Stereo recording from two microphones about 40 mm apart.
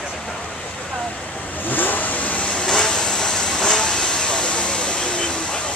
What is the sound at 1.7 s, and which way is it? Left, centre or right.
Vehicle, left.